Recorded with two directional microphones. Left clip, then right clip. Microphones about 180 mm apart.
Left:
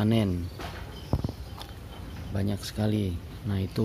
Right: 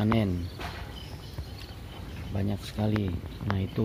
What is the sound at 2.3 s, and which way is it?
Speech, 25° left (ahead or behind).